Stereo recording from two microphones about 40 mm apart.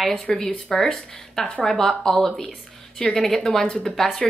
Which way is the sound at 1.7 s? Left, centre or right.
Left.